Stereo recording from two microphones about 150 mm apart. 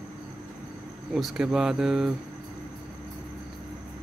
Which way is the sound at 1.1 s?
5° right (ahead or behind).